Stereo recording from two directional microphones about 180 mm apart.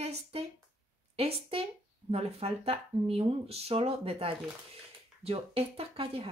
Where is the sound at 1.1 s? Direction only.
35° right (ahead or behind).